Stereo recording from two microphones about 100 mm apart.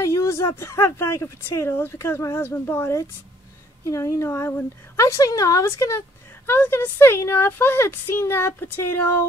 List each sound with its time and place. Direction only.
0.0 s speech: 30° left (ahead or behind)